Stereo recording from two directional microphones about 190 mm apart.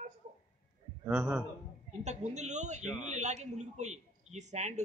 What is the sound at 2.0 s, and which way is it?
A man's voice, 35° right (ahead or behind).